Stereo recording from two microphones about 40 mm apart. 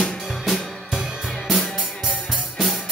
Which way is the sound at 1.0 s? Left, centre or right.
Centre.